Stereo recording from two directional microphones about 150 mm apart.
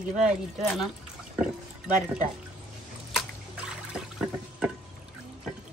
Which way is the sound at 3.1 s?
Centre (ahead or behind).